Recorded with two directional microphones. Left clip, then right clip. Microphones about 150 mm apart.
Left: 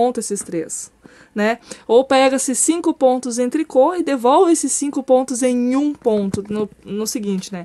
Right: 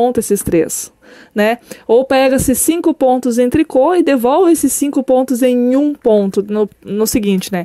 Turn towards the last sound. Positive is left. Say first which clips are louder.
# right 8 dB
turn(degrees=-55)  # may be behind; listen again after turning